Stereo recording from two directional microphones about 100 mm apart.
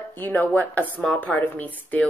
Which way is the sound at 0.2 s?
15° left (ahead or behind).